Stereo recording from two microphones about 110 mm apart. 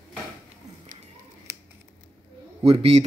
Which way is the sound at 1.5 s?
30° right (ahead or behind).